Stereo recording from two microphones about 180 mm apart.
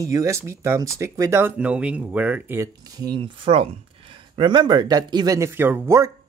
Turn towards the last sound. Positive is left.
turn(degrees=-15)  # may be behind; listen again after turning